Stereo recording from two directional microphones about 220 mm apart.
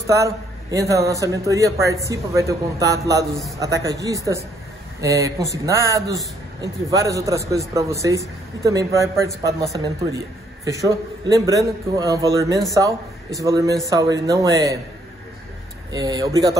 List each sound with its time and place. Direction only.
0.0 s a man's voice: 15° right (ahead or behind)
15.9 s a man's voice: 15° right (ahead or behind)